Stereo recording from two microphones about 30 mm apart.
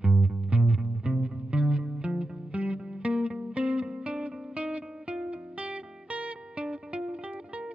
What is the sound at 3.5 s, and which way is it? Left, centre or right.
Music, right.